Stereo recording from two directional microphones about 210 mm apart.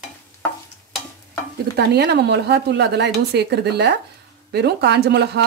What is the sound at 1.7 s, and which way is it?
Speech, 50° right (ahead or behind).